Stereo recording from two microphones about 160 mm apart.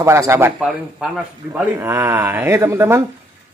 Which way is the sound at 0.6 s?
5° right (ahead or behind).